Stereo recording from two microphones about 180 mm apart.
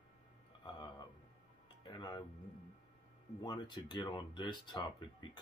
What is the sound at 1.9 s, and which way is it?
Speech, 20° left (ahead or behind).